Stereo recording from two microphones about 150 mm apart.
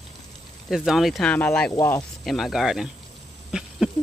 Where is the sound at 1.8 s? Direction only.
20° left (ahead or behind).